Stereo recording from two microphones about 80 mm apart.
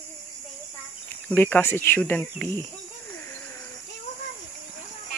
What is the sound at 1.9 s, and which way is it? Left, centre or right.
Speech, centre.